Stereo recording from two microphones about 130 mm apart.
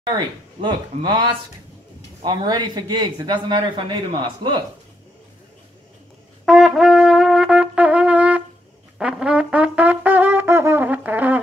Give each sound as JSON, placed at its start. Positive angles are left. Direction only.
{"t": 0.6, "sound": "speech", "side_deg": -35}
{"t": 6.4, "sound": "brass instrument", "side_deg": 0}